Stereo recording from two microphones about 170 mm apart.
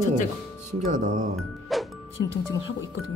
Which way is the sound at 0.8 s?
45° right (ahead or behind).